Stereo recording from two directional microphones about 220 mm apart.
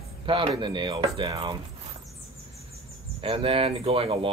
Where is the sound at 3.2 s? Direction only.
25° right (ahead or behind).